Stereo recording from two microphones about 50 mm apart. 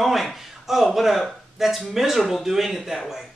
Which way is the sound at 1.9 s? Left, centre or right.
Centre.